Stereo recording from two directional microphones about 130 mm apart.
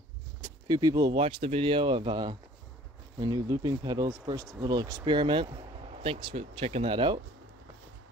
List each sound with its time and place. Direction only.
0.7 s speech: 30° right (ahead or behind)